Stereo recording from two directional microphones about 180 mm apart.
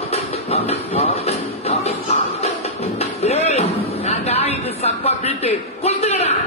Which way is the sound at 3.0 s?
35° left (ahead or behind).